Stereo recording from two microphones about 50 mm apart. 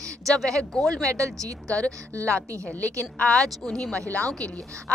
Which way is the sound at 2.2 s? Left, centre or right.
Right.